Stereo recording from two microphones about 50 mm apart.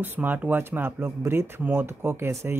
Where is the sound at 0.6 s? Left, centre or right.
Right.